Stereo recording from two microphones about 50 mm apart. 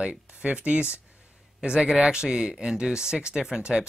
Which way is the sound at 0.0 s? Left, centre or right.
Right.